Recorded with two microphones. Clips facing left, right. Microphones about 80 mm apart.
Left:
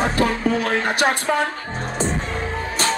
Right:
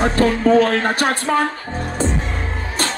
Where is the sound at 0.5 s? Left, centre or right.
Right.